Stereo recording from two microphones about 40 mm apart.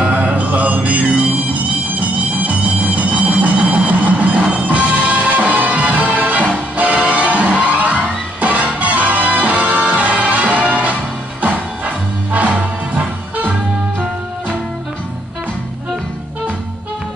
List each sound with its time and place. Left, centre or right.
0.0 s music: right